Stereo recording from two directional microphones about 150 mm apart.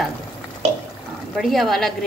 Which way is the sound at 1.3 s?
Centre (ahead or behind).